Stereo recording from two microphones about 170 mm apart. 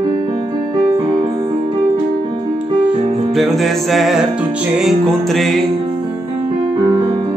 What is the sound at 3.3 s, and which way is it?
Music, centre (ahead or behind).